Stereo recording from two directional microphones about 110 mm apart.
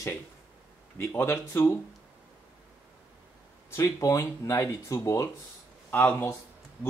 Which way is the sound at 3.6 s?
30° left (ahead or behind).